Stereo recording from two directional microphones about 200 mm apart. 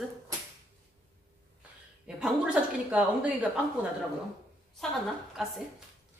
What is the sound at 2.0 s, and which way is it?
Speech, 5° right (ahead or behind).